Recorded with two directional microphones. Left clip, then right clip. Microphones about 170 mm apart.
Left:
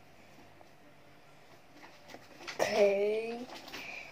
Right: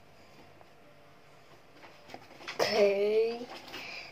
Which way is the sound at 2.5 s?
5° right (ahead or behind).